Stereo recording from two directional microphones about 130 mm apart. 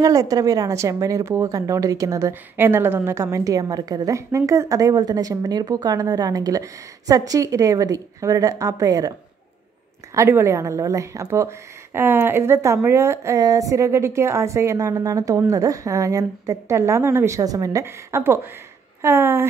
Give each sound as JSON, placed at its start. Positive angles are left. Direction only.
{"t": 0.0, "sound": "a woman's voice", "side_deg": -25}
{"t": 10.1, "sound": "a woman's voice", "side_deg": -20}